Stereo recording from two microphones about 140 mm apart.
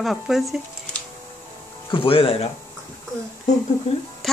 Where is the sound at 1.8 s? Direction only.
40° left (ahead or behind).